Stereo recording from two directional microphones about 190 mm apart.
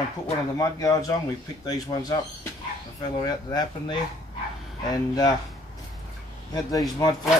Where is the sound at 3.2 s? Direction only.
25° left (ahead or behind).